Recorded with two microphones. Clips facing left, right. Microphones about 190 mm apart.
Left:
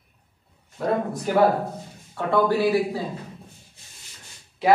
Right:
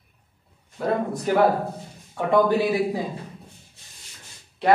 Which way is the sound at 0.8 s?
Centre (ahead or behind).